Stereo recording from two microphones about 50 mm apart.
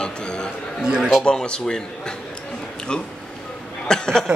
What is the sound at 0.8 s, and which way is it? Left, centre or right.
Speech, centre.